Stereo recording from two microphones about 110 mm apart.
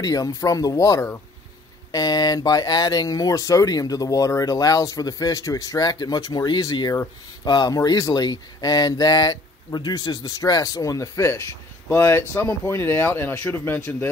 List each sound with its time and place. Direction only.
0.0 s speech: 30° left (ahead or behind)